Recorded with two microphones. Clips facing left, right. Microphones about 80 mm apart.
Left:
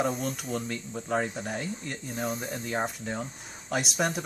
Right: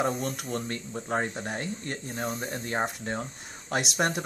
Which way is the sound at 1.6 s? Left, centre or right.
Right.